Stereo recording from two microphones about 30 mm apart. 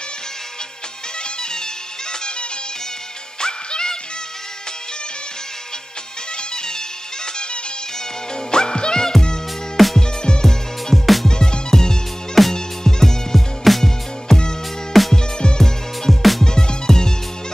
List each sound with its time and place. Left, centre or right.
3.3 s music: left
6.5 s music: left
8.5 s music: left
10.9 s music: centre
11.2 s music: left
13.7 s music: centre
14.3 s music: centre
14.9 s music: centre
15.3 s music: left
16.1 s music: centre
16.4 s music: left